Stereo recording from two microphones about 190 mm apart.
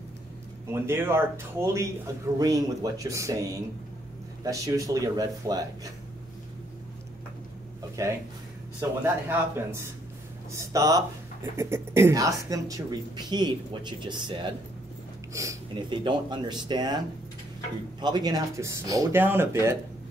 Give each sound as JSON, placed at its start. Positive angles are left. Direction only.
{"t": 0.7, "sound": "speech", "side_deg": -15}
{"t": 4.5, "sound": "speech", "side_deg": -15}
{"t": 8.0, "sound": "speech", "side_deg": -15}
{"t": 18.0, "sound": "speech", "side_deg": -20}